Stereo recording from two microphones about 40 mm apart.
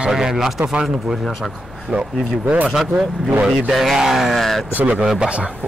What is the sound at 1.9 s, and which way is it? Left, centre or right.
Speech, right.